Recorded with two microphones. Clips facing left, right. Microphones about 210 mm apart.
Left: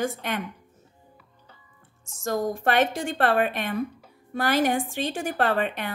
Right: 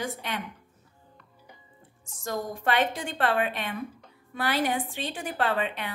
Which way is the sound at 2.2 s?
45° left (ahead or behind).